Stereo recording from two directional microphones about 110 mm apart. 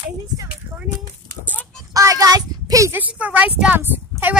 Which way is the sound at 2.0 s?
35° right (ahead or behind).